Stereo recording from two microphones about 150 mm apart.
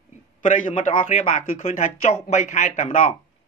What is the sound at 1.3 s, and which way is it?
Speech, 50° left (ahead or behind).